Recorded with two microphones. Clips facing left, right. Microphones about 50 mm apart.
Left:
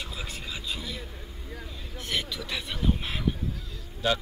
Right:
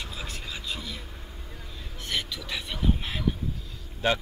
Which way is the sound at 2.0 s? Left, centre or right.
Centre.